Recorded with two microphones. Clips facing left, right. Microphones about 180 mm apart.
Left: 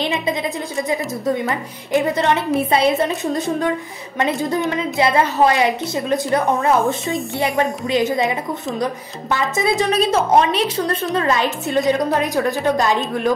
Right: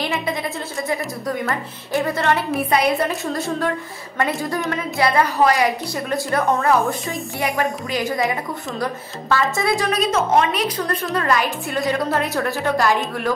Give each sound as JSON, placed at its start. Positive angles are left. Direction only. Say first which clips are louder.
{"t": 0.0, "sound": "a woman's voice", "louder": "left 3 dB", "side_deg": 20}
{"t": 7.3, "sound": "a woman's voice", "louder": "left 1 dB", "side_deg": 30}